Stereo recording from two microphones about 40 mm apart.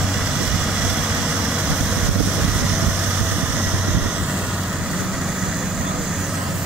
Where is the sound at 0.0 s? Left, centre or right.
Centre.